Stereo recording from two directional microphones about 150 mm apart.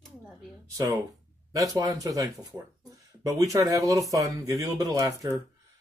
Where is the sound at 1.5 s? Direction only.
25° right (ahead or behind).